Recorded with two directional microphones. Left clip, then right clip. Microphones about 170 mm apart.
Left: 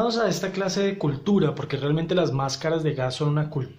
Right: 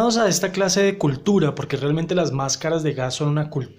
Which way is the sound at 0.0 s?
40° right (ahead or behind).